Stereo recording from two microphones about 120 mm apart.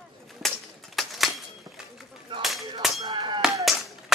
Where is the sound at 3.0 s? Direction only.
40° right (ahead or behind).